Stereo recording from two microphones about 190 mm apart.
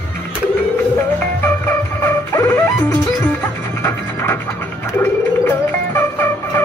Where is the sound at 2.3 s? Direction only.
10° left (ahead or behind).